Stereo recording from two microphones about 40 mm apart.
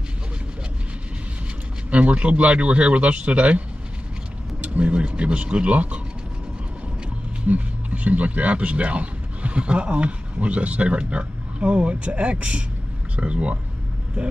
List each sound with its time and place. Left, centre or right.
1.9 s a man's voice: right
4.6 s a man's voice: right
7.4 s a man's voice: right